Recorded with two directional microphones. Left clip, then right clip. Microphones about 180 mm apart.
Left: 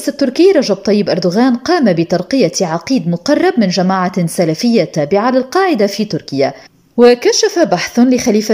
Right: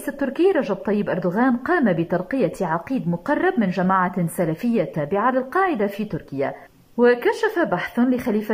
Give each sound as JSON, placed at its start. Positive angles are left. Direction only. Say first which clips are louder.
{"t": 0.0, "sound": "a woman's voice", "louder": "left 10 dB", "side_deg": 20}